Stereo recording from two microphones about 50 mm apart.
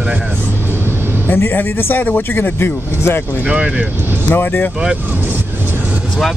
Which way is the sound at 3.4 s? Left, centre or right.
Right.